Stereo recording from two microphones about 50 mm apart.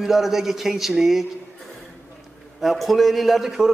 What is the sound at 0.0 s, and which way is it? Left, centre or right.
Speech, centre.